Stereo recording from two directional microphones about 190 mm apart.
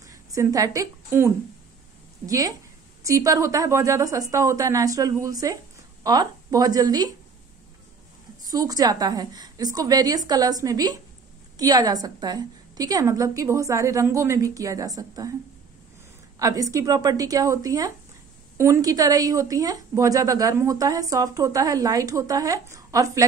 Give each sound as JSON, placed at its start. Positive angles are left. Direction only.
{"t": 0.0, "sound": "a woman's voice", "side_deg": -15}
{"t": 8.5, "sound": "a woman's voice", "side_deg": -20}
{"t": 16.3, "sound": "a woman's voice", "side_deg": -20}